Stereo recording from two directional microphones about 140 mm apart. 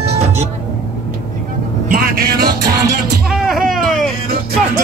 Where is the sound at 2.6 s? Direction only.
25° right (ahead or behind).